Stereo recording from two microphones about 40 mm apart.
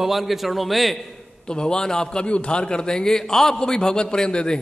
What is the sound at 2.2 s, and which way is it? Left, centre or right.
A man's voice, left.